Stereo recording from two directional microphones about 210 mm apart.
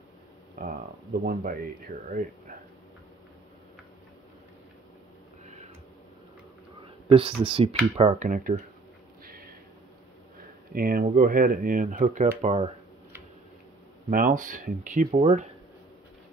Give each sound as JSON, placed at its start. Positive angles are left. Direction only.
{"t": 0.6, "sound": "speech", "side_deg": -45}
{"t": 5.4, "sound": "a sound", "side_deg": -35}
{"t": 7.1, "sound": "speech", "side_deg": -25}
{"t": 9.2, "sound": "a sound", "side_deg": -45}
{"t": 10.7, "sound": "speech", "side_deg": -45}
{"t": 14.1, "sound": "speech", "side_deg": -40}